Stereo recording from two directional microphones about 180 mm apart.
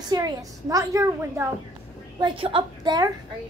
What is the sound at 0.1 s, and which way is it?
A woman's voice, 20° right (ahead or behind).